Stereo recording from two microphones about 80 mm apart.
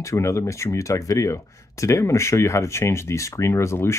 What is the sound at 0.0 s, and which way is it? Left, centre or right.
Speech, left.